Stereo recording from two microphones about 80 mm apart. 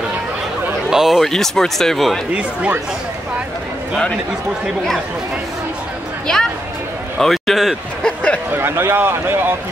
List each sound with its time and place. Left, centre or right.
0.8 s speech: centre
6.2 s a sound: centre
7.2 s speech: centre
8.5 s speech: right